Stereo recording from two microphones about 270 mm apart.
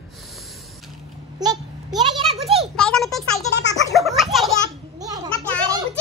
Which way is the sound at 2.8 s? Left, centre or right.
Centre.